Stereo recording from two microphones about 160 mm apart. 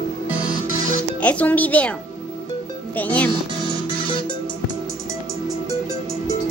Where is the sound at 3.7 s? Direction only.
30° left (ahead or behind).